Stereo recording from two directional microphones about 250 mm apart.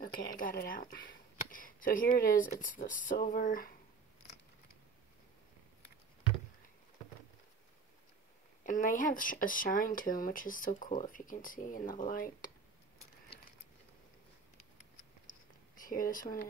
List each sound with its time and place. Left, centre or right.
0.0 s speech: left
8.6 s speech: left
15.3 s a sound: left
15.7 s speech: left